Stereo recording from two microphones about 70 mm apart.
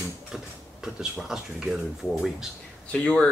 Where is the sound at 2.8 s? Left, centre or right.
Centre.